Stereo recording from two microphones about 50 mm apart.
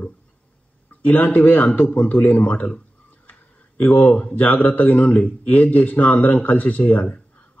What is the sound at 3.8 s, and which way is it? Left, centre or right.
A man's voice, left.